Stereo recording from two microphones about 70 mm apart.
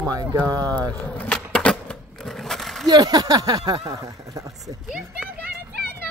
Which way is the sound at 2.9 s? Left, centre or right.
Right.